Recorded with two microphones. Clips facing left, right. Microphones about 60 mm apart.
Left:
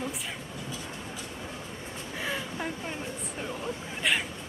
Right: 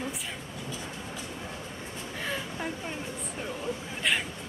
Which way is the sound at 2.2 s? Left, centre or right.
Centre.